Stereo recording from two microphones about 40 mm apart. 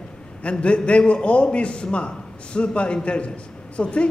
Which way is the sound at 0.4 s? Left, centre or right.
Left.